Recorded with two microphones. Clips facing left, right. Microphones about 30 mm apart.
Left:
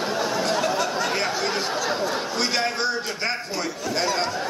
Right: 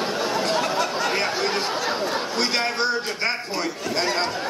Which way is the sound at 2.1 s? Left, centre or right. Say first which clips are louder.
Right 1 dB; centre.